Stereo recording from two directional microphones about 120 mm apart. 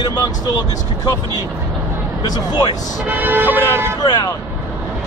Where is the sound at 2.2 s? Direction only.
35° left (ahead or behind).